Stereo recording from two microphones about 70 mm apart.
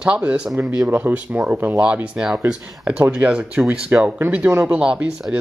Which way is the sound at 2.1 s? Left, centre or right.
Centre.